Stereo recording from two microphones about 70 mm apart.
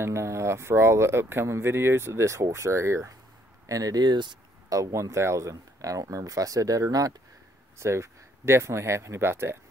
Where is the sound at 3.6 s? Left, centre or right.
Right.